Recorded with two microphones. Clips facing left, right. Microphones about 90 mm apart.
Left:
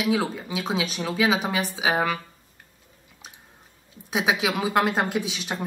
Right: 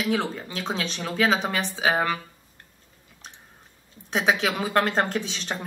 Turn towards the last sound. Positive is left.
turn(degrees=10)  # may be behind; listen again after turning